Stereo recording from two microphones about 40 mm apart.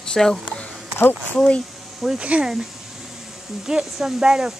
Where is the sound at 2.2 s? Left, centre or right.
Right.